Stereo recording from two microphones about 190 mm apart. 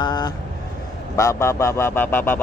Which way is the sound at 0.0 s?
20° left (ahead or behind).